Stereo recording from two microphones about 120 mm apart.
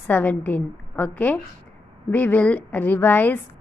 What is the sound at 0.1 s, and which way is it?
A woman's voice, 15° left (ahead or behind).